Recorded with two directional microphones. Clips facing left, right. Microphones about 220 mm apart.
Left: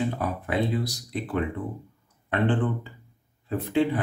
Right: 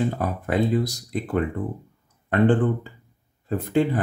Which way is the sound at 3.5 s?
45° right (ahead or behind).